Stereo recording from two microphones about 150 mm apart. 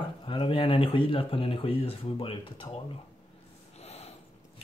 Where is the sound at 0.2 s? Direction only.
35° left (ahead or behind).